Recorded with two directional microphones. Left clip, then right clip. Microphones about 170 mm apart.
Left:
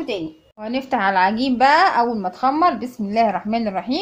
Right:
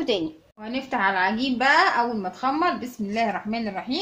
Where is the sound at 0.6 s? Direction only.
40° left (ahead or behind).